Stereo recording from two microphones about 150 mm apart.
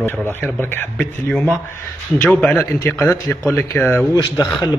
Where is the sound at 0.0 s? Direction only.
15° left (ahead or behind).